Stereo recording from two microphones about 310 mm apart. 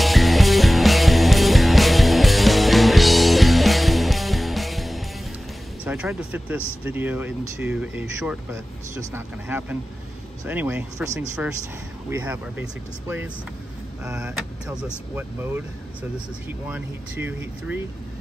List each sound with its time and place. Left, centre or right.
0.0 s music: centre
5.9 s speech: centre
14.0 s speech: centre